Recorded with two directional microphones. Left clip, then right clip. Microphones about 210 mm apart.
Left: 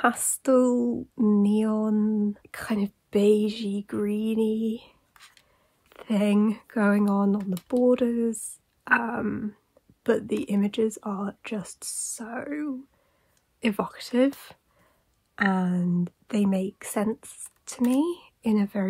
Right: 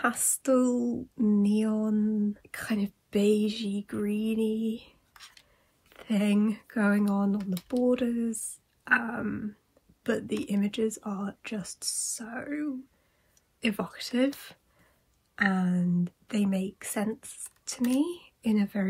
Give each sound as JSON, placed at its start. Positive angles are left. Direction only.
{"t": 0.0, "sound": "speech", "side_deg": 25}
{"t": 5.1, "sound": "whispering", "side_deg": 0}
{"t": 5.9, "sound": "speech", "side_deg": 25}